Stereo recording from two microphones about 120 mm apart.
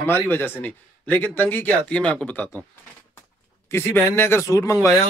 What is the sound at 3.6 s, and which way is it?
Speech, 20° left (ahead or behind).